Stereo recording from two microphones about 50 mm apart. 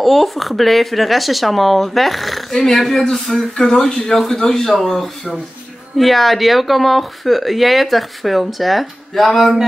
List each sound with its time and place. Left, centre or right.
0.0 s speech: centre